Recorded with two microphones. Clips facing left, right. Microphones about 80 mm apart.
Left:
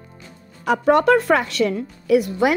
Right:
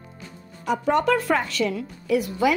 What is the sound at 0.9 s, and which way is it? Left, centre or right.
A woman's voice, left.